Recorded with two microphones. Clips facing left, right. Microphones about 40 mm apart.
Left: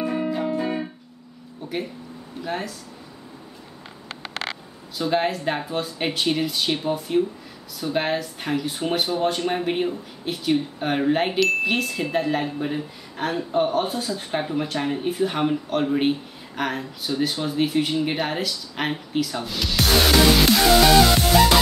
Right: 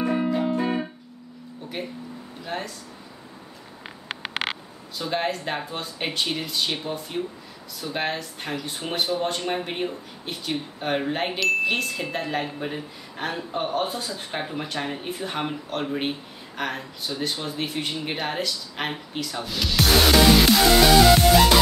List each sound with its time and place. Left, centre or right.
0.0 s music: centre
1.8 s speech: centre
4.1 s a sound: right
4.9 s speech: centre